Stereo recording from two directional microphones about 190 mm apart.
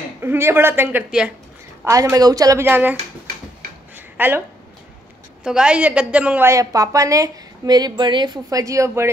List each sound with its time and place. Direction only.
0.2 s a woman's voice: 10° right (ahead or behind)
3.9 s a sound: 10° right (ahead or behind)
5.4 s a woman's voice: 5° right (ahead or behind)